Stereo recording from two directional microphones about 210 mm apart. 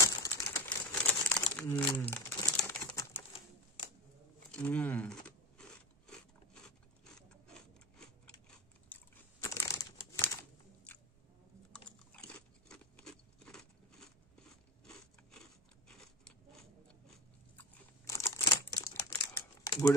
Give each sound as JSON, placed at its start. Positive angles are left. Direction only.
{"t": 0.0, "sound": "a sound", "side_deg": 15}
{"t": 1.5, "sound": "crumpling", "side_deg": 60}
{"t": 2.0, "sound": "crumpling", "side_deg": 10}
{"t": 2.5, "sound": "bird", "side_deg": 10}
{"t": 4.5, "sound": "speech", "side_deg": 5}
{"t": 5.2, "sound": "a sound", "side_deg": 5}
{"t": 11.7, "sound": "biting", "side_deg": 5}
{"t": 17.6, "sound": "crumpling", "side_deg": 15}
{"t": 19.0, "sound": "typing", "side_deg": 15}